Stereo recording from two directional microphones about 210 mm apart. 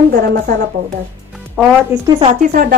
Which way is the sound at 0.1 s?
50° right (ahead or behind).